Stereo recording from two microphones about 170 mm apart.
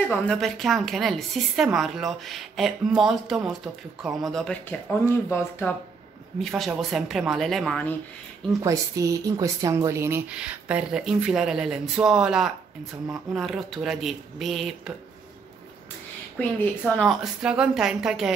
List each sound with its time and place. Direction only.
0.2 s a woman's voice: 5° left (ahead or behind)
6.4 s a woman's voice: centre (ahead or behind)
8.6 s a woman's voice: 20° right (ahead or behind); by 14.7 s centre (ahead or behind)
16.3 s speech: 10° left (ahead or behind)
17.4 s a woman's voice: 5° right (ahead or behind)